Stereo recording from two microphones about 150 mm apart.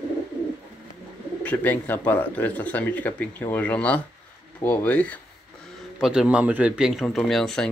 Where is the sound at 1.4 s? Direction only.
10° left (ahead or behind).